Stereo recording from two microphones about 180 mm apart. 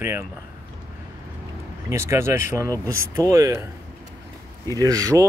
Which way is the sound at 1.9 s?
15° right (ahead or behind).